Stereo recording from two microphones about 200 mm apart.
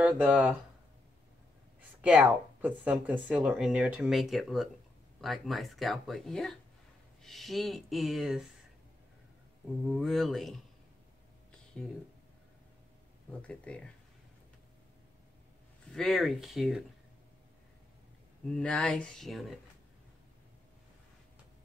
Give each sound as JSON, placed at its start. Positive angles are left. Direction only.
{"t": 0.0, "sound": "speech", "side_deg": -5}
{"t": 2.0, "sound": "speech", "side_deg": -5}
{"t": 9.8, "sound": "speech", "side_deg": 0}
{"t": 13.3, "sound": "speech", "side_deg": 5}
{"t": 15.9, "sound": "speech", "side_deg": 0}
{"t": 18.5, "sound": "speech", "side_deg": 5}